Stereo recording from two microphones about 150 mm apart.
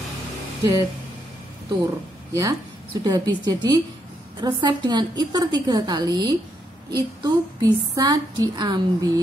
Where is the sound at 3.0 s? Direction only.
25° right (ahead or behind).